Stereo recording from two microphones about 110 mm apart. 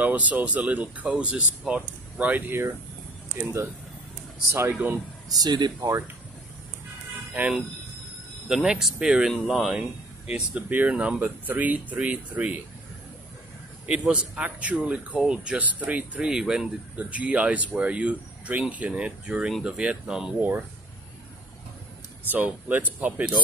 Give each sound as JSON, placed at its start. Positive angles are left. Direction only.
{"t": 0.0, "sound": "speech", "side_deg": -15}
{"t": 5.3, "sound": "speech", "side_deg": -40}
{"t": 8.5, "sound": "speech", "side_deg": -5}
{"t": 13.8, "sound": "speech", "side_deg": -10}
{"t": 22.3, "sound": "speech", "side_deg": -15}